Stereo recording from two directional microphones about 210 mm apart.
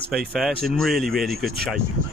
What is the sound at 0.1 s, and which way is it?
Speech, centre (ahead or behind).